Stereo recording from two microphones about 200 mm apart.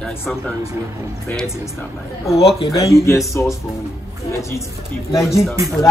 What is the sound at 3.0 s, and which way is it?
Speech, 15° left (ahead or behind).